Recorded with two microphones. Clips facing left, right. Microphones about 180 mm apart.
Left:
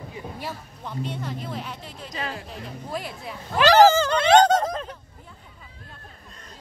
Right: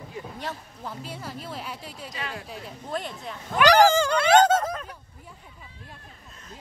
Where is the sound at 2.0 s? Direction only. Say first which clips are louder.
Left 4 dB; 40° left (ahead or behind).